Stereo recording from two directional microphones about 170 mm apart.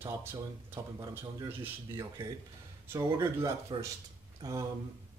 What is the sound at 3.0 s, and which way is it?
Speech, 25° right (ahead or behind).